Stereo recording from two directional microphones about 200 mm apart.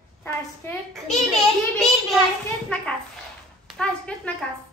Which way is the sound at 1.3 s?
Centre (ahead or behind).